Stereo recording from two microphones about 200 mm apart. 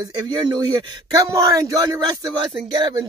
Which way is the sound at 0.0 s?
20° right (ahead or behind).